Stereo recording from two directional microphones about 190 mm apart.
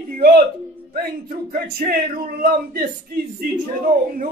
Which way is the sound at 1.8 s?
45° right (ahead or behind).